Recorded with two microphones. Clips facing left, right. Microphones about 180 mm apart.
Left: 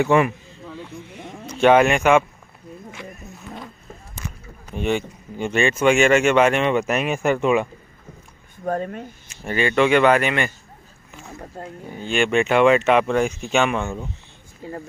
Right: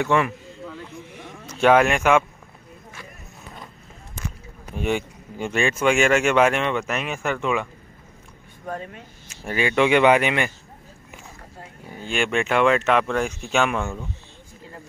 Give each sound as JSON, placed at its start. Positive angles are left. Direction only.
{"t": 0.0, "sound": "a sound", "side_deg": 10}
{"t": 1.5, "sound": "speech", "side_deg": 0}
{"t": 4.7, "sound": "speech", "side_deg": -5}
{"t": 6.7, "sound": "speech", "side_deg": 10}
{"t": 8.6, "sound": "speech", "side_deg": 40}
{"t": 9.3, "sound": "speech", "side_deg": -5}
{"t": 12.0, "sound": "speech", "side_deg": -5}